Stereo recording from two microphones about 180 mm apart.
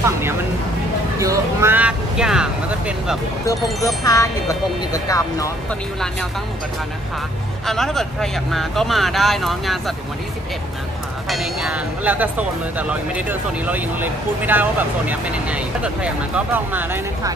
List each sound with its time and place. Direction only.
0.0 s speech: 15° right (ahead or behind)
3.8 s speech: 20° left (ahead or behind)
7.6 s speech: centre (ahead or behind)
11.2 s speech: centre (ahead or behind)